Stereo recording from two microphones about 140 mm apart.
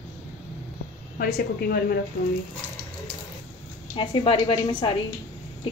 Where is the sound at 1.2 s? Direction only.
90° left.